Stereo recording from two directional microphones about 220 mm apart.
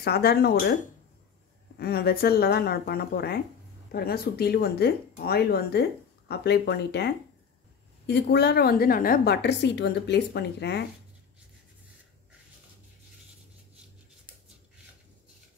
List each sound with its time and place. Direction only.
0.0 s speech: 45° left (ahead or behind)
1.8 s speech: 45° left (ahead or behind)
8.1 s speech: 50° left (ahead or behind)